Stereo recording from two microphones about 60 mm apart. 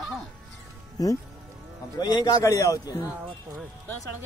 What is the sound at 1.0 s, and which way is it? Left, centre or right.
Speech, left.